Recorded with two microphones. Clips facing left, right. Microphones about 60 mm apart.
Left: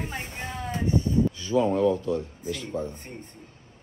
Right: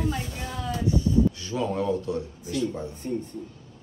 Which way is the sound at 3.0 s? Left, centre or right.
Left.